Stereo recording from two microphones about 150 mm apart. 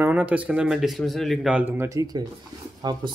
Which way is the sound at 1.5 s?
15° right (ahead or behind).